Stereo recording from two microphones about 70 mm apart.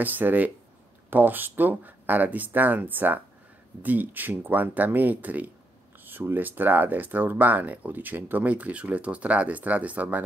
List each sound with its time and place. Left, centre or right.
0.0 s speech: right